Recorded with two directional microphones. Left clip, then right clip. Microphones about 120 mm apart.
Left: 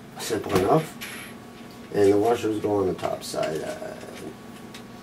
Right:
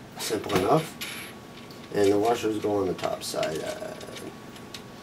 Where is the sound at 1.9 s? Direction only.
25° right (ahead or behind).